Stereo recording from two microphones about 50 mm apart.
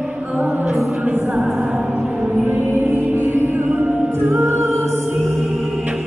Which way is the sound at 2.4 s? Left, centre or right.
Right.